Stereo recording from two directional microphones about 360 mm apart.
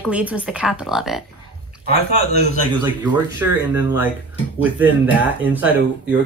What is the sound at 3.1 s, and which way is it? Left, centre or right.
A woman's voice, centre.